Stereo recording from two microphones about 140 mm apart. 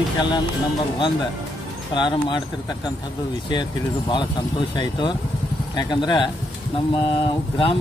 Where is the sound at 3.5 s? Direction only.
30° left (ahead or behind).